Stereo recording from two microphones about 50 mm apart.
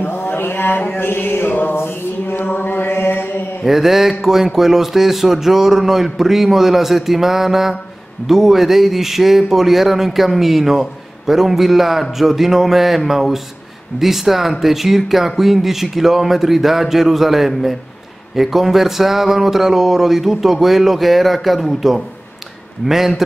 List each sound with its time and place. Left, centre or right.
0.4 s mantra: left
1.8 s mantra: left
3.6 s speech: centre